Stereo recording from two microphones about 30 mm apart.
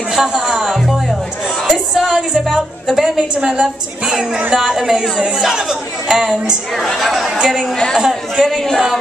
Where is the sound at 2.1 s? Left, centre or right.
Right.